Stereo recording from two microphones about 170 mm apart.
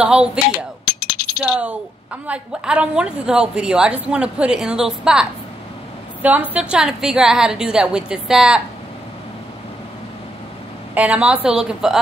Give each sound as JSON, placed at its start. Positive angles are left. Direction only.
{"t": 0.0, "sound": "speech", "side_deg": -5}
{"t": 0.8, "sound": "coin", "side_deg": 65}
{"t": 1.4, "sound": "a woman's voice", "side_deg": -10}
{"t": 6.2, "sound": "a woman's voice", "side_deg": -10}
{"t": 11.0, "sound": "a woman's voice", "side_deg": -5}